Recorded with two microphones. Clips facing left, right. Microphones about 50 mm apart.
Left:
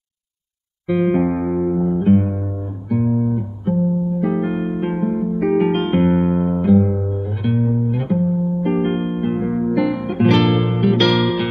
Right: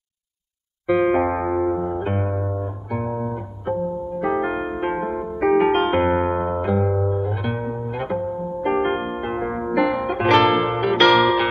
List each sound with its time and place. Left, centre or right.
0.8 s music: right